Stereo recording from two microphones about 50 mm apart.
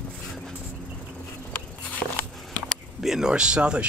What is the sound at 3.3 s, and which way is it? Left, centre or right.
Speech, centre.